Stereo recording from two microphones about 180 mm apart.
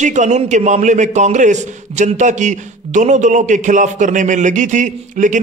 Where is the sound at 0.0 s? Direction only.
40° right (ahead or behind).